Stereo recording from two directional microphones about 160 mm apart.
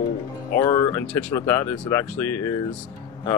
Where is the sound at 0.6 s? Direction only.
25° left (ahead or behind).